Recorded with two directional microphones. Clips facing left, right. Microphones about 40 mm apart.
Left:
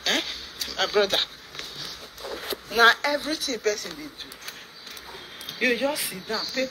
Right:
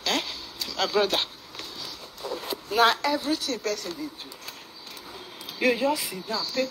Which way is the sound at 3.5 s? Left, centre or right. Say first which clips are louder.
Left 3 dB; left.